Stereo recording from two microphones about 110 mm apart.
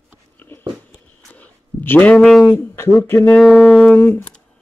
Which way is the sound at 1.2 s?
15° left (ahead or behind).